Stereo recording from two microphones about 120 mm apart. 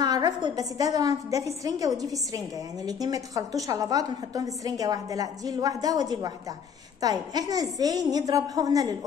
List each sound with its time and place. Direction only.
0.0 s a woman's voice: 35° right (ahead or behind)